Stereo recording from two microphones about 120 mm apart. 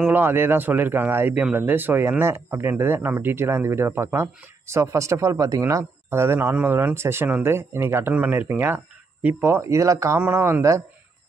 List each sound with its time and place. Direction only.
0.0 s speech: 15° right (ahead or behind)